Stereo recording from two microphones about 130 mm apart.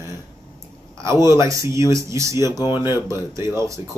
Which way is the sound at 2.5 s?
30° left (ahead or behind).